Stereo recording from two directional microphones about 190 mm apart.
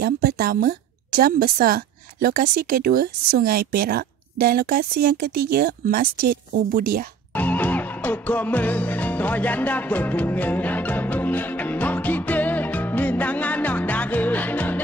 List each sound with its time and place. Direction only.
0.0 s a woman's voice: 55° right (ahead or behind)
7.3 s music: 10° left (ahead or behind)